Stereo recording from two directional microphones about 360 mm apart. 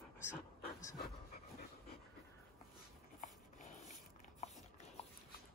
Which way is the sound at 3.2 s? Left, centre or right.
Left.